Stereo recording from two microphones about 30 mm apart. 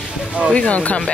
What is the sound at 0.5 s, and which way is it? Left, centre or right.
Speech, left.